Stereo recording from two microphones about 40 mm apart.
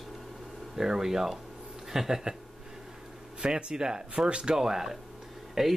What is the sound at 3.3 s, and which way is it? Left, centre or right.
Speech, right.